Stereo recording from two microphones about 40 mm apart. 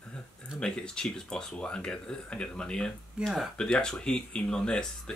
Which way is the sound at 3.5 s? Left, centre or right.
Left.